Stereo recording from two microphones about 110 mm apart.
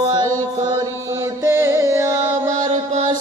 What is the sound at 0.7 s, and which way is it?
Music, 25° right (ahead or behind).